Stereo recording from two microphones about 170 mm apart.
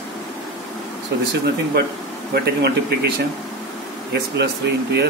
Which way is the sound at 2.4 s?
80° right.